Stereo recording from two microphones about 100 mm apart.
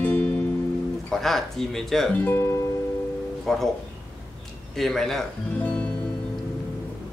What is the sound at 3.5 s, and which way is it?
Speech, 5° left (ahead or behind).